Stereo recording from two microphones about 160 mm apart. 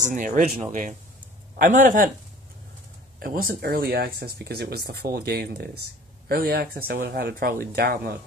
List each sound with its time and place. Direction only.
0.0 s speech: 55° right (ahead or behind)
3.2 s speech: 65° right (ahead or behind)